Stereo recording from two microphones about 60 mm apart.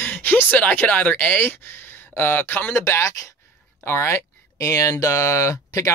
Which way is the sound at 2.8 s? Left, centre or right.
Left.